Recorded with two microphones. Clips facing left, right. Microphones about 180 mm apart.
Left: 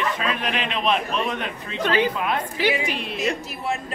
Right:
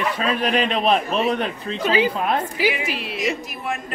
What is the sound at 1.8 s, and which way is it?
A woman's voice, 5° right (ahead or behind).